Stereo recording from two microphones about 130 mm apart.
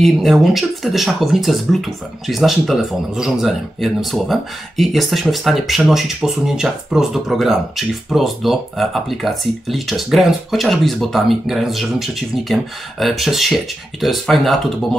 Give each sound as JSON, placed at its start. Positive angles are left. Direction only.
{"t": 0.0, "sound": "speech", "side_deg": 0}